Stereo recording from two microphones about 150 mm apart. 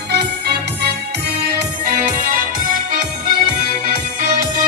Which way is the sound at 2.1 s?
60° right (ahead or behind).